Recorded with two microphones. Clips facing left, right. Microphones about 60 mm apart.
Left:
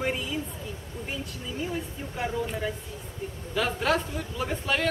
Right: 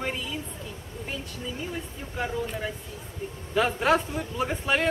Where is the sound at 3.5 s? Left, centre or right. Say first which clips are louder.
Right 3 dB; centre.